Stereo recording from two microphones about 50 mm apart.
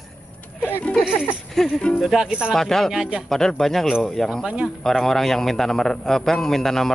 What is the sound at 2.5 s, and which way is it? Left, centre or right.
A man's voice, centre.